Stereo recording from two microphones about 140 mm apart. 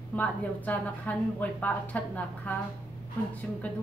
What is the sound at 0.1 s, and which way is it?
Speech, 10° left (ahead or behind).